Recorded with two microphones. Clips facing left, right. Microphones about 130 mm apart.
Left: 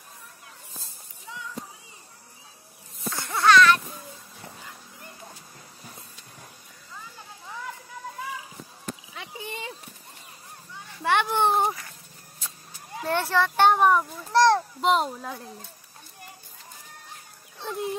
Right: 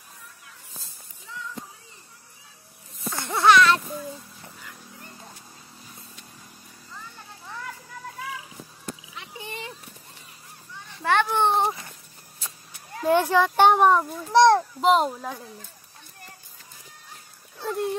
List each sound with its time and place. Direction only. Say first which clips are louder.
3.1 s a sound: right 2 dB; 25° right (ahead or behind)
7.4 s children playing: even; 5° left (ahead or behind)
11.0 s children playing: right 1 dB; 15° left (ahead or behind)
11.4 s a sound: right 1 dB; centre (ahead or behind)
13.0 s a child's voice: right 5 dB; 10° right (ahead or behind)
14.8 s a child's voice: right 3 dB; centre (ahead or behind)
17.6 s dog: right 3 dB; centre (ahead or behind)